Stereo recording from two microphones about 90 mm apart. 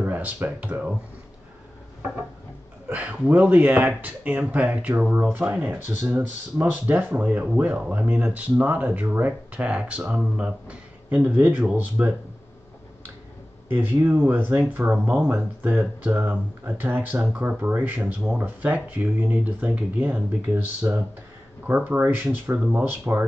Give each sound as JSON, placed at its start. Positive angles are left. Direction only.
{"t": 0.0, "sound": "speech", "side_deg": -20}
{"t": 2.9, "sound": "speech", "side_deg": -15}
{"t": 13.7, "sound": "speech", "side_deg": -20}